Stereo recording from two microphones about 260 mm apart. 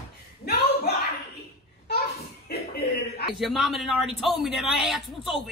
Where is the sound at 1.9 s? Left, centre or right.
Left.